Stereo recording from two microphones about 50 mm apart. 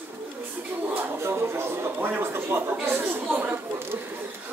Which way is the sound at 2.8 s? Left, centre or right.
Right.